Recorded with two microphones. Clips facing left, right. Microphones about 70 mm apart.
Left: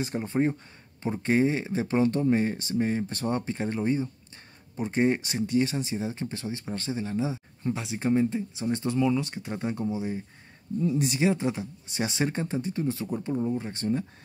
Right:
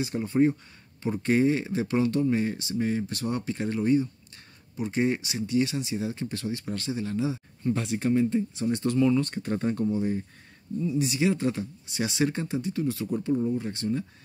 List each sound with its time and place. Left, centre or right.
0.0 s speech: left
7.7 s speech: centre
8.0 s speech: left
10.8 s speech: left
11.1 s speech: left
11.9 s speech: left